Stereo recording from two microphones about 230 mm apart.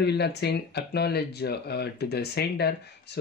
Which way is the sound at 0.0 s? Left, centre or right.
Left.